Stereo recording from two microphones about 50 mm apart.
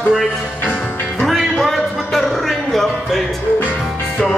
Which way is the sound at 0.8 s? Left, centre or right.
Left.